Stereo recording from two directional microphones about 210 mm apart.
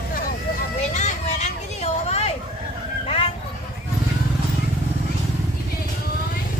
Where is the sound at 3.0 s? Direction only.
25° left (ahead or behind).